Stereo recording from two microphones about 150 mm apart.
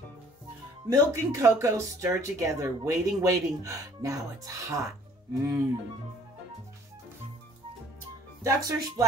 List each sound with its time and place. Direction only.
0.8 s speech: 20° right (ahead or behind)
8.5 s speech: 25° right (ahead or behind)